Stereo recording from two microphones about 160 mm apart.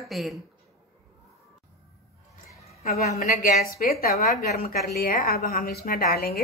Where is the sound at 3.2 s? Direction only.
70° left (ahead or behind).